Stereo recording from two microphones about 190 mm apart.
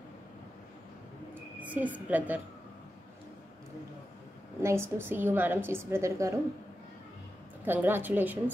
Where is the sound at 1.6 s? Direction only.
10° right (ahead or behind).